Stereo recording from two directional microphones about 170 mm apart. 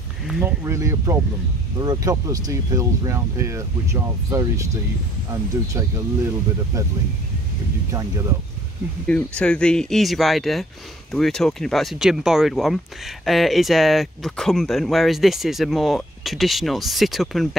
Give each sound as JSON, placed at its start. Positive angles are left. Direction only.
{"t": 0.3, "sound": "speech", "side_deg": -10}
{"t": 9.0, "sound": "speech", "side_deg": 5}